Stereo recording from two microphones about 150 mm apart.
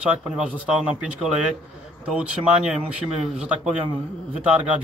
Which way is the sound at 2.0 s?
5° right (ahead or behind).